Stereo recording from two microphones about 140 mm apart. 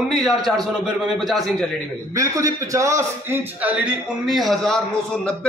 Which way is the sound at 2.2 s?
25° right (ahead or behind).